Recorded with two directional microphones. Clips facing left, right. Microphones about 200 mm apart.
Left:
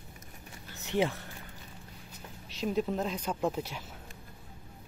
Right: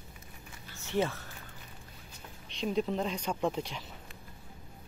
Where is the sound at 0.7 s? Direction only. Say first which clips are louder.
Left 1 dB; 15° left (ahead or behind).